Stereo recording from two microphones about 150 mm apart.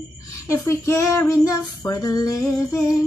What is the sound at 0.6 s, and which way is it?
Female singing, 20° left (ahead or behind).